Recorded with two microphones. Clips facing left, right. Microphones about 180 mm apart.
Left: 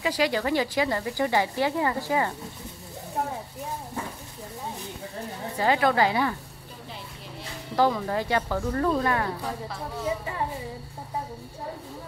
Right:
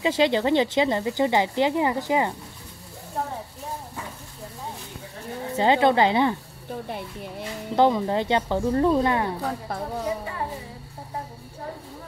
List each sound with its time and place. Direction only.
0.0 s speech: 25° right (ahead or behind)
5.6 s speech: 25° right (ahead or behind)
7.7 s speech: 25° right (ahead or behind)